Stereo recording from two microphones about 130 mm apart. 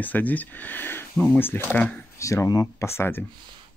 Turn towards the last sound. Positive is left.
turn(degrees=20)  # may be behind; listen again after turning